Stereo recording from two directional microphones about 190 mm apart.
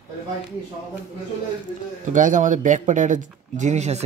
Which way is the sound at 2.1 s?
40° right (ahead or behind).